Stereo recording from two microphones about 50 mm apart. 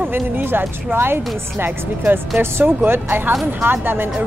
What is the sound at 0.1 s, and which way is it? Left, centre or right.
Speech, right.